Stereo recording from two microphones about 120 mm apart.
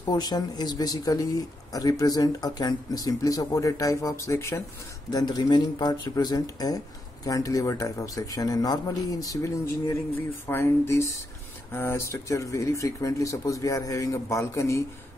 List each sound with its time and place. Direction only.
0.0 s speech: 35° left (ahead or behind)
5.1 s speech: 35° left (ahead or behind)